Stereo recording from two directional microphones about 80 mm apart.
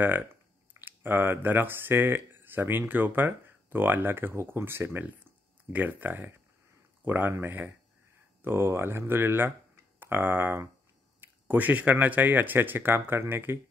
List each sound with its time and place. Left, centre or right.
0.7 s speech: right